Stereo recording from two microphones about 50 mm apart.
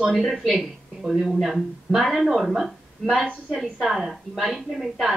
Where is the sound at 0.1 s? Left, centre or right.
Centre.